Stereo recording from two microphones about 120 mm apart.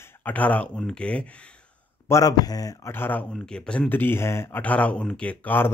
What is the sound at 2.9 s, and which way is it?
Speech, 15° left (ahead or behind).